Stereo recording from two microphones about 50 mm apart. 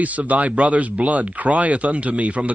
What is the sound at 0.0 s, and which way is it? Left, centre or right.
Speech, right.